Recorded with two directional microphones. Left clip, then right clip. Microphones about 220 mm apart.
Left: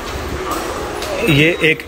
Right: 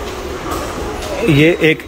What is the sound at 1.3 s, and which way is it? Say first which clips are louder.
Speech: right 2 dB; 15° right (ahead or behind).